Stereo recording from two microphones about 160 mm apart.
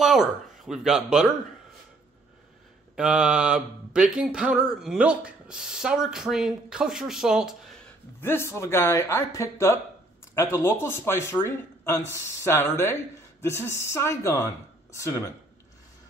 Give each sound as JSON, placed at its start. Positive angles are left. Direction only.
{"t": 0.0, "sound": "speech", "side_deg": 0}
{"t": 3.0, "sound": "speech", "side_deg": -5}
{"t": 8.2, "sound": "speech", "side_deg": 15}